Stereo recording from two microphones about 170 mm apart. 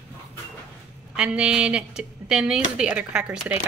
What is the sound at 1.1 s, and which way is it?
A woman's voice, 5° right (ahead or behind).